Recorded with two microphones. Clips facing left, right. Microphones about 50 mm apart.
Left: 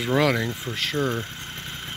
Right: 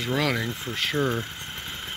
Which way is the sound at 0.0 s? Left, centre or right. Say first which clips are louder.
Left 4 dB; centre.